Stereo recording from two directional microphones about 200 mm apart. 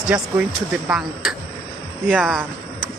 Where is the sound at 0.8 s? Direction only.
5° right (ahead or behind).